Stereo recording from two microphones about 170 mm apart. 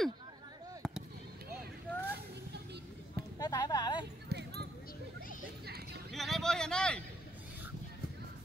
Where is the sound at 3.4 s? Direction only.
20° left (ahead or behind).